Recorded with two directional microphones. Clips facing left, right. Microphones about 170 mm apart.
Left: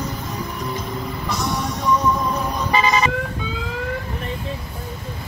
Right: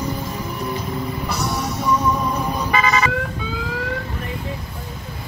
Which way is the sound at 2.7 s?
25° left (ahead or behind).